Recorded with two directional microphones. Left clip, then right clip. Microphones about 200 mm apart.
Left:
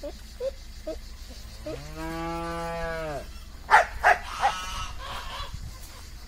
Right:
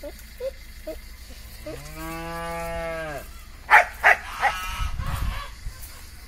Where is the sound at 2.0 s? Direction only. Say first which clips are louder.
Even; 35° right (ahead or behind).